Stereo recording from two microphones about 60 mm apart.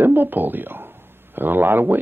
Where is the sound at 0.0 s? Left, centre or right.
Right.